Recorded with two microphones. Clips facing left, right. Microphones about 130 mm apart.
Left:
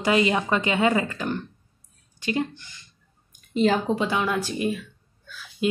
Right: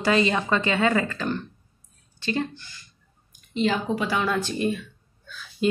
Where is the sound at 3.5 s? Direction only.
45° left (ahead or behind).